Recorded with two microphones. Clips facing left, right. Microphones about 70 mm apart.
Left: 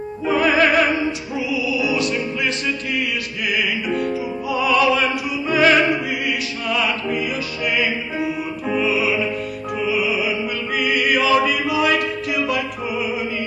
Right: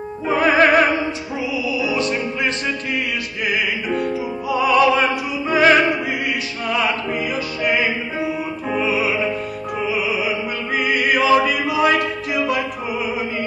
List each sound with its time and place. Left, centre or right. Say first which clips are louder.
0.3 s opera: right 2 dB; right
1.5 s music: left 1 dB; right
3.9 s music: even; right